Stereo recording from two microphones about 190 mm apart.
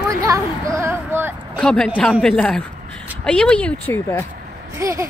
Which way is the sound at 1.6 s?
5° left (ahead or behind).